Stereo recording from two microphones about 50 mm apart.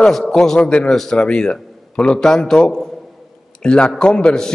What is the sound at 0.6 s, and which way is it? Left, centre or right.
Speech, left.